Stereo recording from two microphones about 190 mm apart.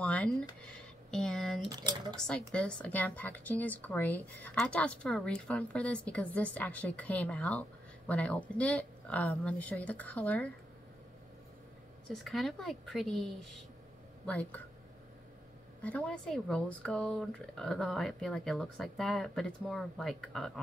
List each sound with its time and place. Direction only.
0.0 s speech: 5° left (ahead or behind)
1.7 s speech: 25° right (ahead or behind)
2.1 s speech: 5° left (ahead or behind)
12.1 s speech: centre (ahead or behind)
15.8 s speech: 5° left (ahead or behind)